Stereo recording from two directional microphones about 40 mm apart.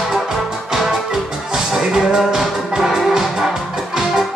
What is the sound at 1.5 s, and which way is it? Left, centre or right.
Music, centre.